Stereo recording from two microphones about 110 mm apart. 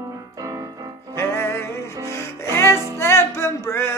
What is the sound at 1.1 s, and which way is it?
Music, 20° left (ahead or behind).